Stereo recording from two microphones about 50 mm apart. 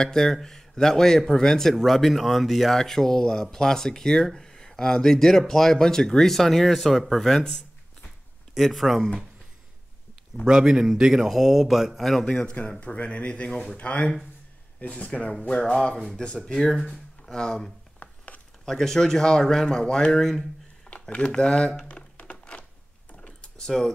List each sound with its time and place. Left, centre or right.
0.0 s speech: centre
2.8 s speech: centre
7.4 s a sound: centre
8.5 s speech: centre
10.4 s a man's voice: centre
12.3 s speech: left
15.4 s speech: centre
16.7 s speech: centre
17.3 s speech: centre
17.9 s a sound: left
18.7 s speech: centre
21.1 s speech: left
22.2 s a sound: left
23.7 s speech: centre